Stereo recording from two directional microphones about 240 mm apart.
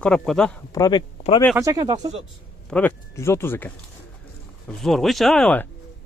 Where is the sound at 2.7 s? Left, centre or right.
Centre.